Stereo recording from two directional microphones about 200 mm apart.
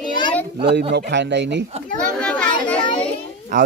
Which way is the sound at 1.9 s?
5° left (ahead or behind).